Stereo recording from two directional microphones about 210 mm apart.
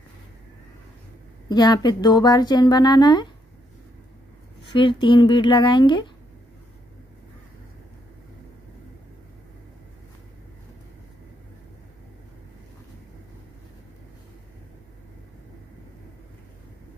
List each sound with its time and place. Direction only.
1.5 s speech: 20° left (ahead or behind)
4.7 s speech: 25° left (ahead or behind)